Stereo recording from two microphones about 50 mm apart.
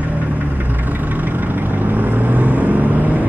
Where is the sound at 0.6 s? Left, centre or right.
Right.